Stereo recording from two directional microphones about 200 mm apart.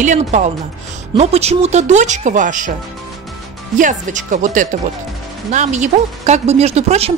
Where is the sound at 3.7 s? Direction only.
40° right (ahead or behind).